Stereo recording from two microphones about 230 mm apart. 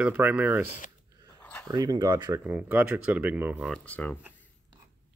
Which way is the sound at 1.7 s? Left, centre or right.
Centre.